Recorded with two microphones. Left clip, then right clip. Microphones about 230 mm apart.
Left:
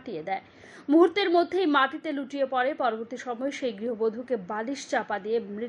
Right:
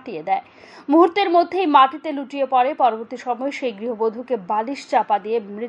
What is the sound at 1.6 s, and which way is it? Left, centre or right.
A woman's voice, right.